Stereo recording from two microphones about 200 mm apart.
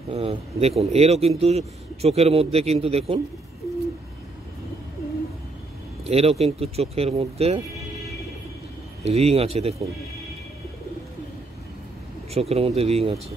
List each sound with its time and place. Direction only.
0.1 s speech: 30° right (ahead or behind)
6.0 s speech: 30° right (ahead or behind)
9.0 s speech: 30° right (ahead or behind)
12.4 s speech: 30° right (ahead or behind)